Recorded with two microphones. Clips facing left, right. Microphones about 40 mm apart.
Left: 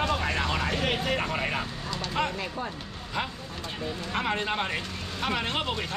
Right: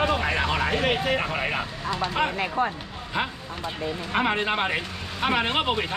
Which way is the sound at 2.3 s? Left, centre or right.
Right.